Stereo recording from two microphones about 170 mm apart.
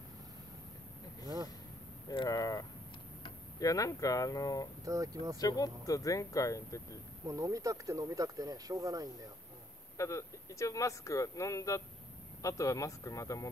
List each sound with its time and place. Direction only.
2.0 s speech: 20° left (ahead or behind)
4.8 s speech: 20° right (ahead or behind)
5.4 s speech: 20° left (ahead or behind)
7.2 s speech: 20° right (ahead or behind)
9.9 s speech: 20° left (ahead or behind)